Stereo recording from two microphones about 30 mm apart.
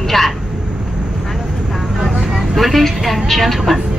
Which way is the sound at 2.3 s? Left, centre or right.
Centre.